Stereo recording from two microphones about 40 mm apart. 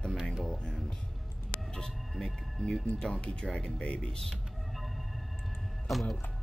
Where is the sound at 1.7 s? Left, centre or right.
Centre.